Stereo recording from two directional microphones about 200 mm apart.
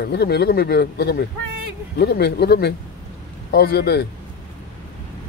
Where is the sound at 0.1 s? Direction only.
55° left (ahead or behind).